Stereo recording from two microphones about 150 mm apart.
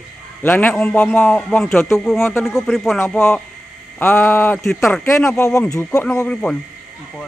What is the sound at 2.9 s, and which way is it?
A man's voice, 15° left (ahead or behind).